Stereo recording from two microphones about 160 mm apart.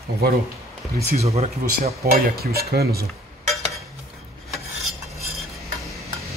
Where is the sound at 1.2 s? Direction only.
40° right (ahead or behind).